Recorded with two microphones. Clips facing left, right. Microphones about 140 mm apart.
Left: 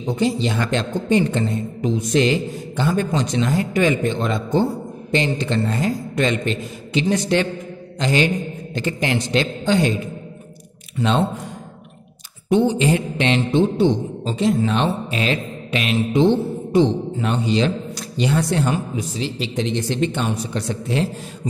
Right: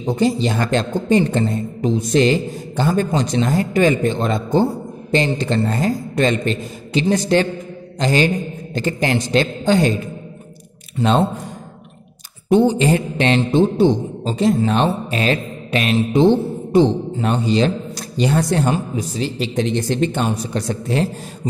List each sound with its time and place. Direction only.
0.0 s mantra: 40° right (ahead or behind)
11.0 s mantra: 40° right (ahead or behind)
12.4 s mantra: 40° right (ahead or behind)